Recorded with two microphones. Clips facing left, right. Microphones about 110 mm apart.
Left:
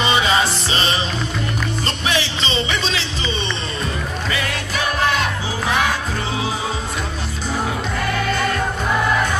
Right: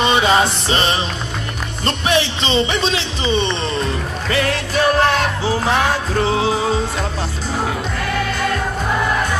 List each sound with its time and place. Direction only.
0.0 s music: 50° right (ahead or behind)
1.9 s music: 50° right (ahead or behind)